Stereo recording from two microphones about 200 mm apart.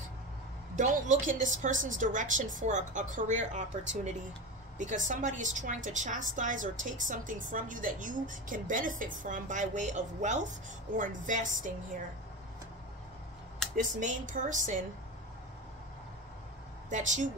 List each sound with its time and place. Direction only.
0.7 s a woman's voice: 40° right (ahead or behind)
13.7 s a woman's voice: 40° right (ahead or behind)
16.9 s a woman's voice: 40° right (ahead or behind)